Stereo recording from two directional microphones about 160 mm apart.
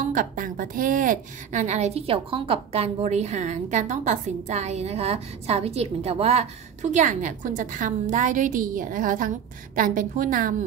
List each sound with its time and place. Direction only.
0.0 s a woman's voice: 55° right (ahead or behind)